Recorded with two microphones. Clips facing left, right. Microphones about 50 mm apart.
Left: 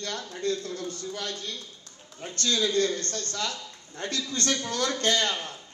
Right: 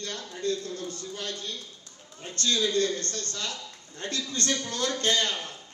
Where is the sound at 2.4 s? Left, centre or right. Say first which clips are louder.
Left 1 dB; left.